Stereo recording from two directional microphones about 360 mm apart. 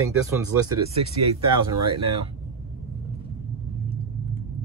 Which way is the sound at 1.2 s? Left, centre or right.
Right.